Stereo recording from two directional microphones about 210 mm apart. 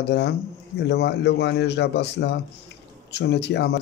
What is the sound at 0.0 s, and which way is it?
Speech, 50° left (ahead or behind).